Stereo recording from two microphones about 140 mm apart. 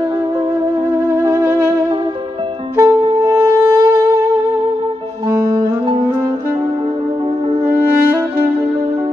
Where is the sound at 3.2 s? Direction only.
20° right (ahead or behind).